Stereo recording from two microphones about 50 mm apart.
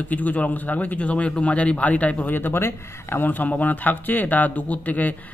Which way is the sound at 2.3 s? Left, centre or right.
Left.